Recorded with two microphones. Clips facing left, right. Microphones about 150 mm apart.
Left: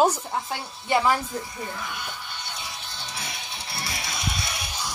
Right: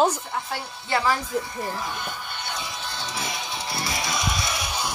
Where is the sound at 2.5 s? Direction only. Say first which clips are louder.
Right 5 dB; 90° right.